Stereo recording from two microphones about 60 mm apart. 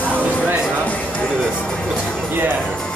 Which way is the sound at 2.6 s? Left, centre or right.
Centre.